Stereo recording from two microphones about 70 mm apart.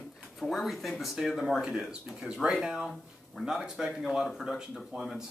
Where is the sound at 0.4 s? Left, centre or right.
Centre.